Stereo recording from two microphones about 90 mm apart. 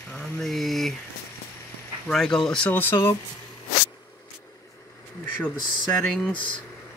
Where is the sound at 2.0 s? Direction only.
5° left (ahead or behind).